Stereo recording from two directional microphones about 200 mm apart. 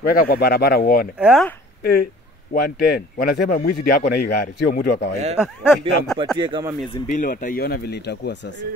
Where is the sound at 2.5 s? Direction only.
45° left (ahead or behind).